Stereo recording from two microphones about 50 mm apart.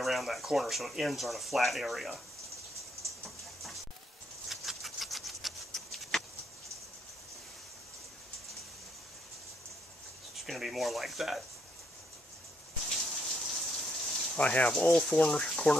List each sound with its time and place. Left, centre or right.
0.0 s speech: centre
4.5 s a sound: centre
10.3 s speech: centre
12.8 s a sound: centre
14.3 s speech: left
14.7 s speech: centre